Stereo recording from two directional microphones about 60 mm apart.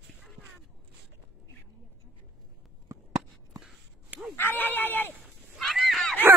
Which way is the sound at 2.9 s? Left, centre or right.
Right.